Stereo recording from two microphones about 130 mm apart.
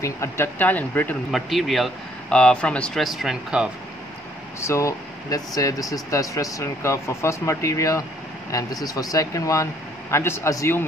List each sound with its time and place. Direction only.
0.0 s speech: 20° left (ahead or behind)
1.3 s speech: centre (ahead or behind)
4.6 s speech: 25° left (ahead or behind)